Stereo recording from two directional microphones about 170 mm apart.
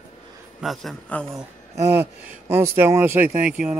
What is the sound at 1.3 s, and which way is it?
Speech, 15° right (ahead or behind).